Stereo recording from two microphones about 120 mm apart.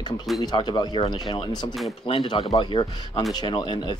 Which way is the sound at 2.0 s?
45° left (ahead or behind).